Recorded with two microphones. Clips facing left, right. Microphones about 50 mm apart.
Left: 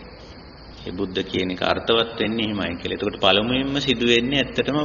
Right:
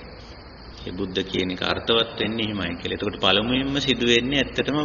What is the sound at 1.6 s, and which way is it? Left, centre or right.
Speech, centre.